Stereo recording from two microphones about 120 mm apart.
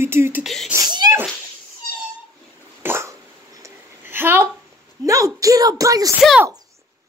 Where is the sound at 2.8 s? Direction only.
20° right (ahead or behind).